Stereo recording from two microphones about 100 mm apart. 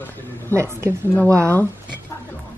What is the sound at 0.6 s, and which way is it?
Speech, 30° right (ahead or behind).